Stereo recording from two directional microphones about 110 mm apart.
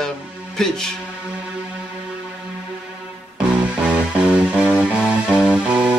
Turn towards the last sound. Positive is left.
turn(degrees=-10)  # may be behind; listen again after turning